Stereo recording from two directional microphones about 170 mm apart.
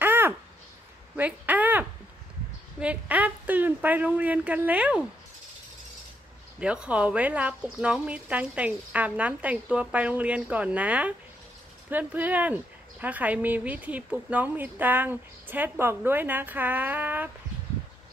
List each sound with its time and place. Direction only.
0.0 s a sound: 10° right (ahead or behind)
1.1 s speech: 10° right (ahead or behind)
6.6 s speech: 5° right (ahead or behind)